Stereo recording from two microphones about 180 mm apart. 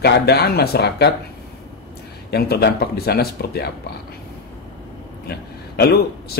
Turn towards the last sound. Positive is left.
turn(degrees=60)  # may be behind; listen again after turning